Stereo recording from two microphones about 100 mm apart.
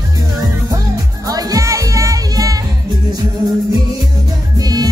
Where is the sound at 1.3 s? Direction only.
40° right (ahead or behind).